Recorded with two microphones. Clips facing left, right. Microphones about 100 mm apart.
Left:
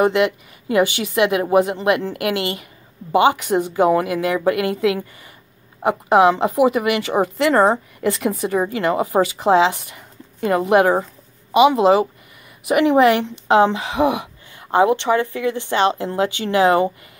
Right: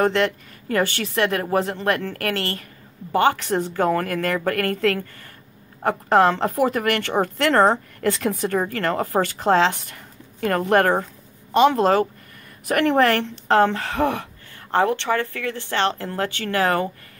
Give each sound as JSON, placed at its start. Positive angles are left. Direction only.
{"t": 0.0, "sound": "speech", "side_deg": 10}